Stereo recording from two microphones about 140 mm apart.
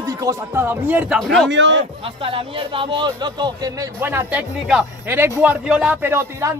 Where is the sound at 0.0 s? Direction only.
25° right (ahead or behind).